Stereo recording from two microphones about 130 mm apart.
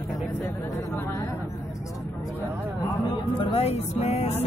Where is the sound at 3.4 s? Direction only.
50° left (ahead or behind).